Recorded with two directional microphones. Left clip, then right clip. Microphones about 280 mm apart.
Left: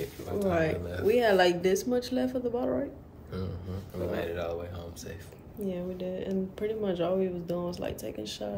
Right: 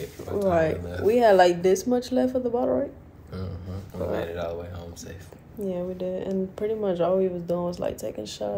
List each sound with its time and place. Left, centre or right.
0.5 s speech: centre
4.1 s speech: centre
5.6 s speech: centre